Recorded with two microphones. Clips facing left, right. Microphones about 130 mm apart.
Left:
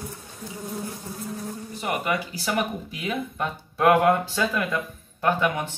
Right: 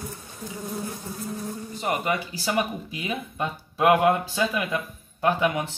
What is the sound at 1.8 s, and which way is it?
Speech, 25° right (ahead or behind).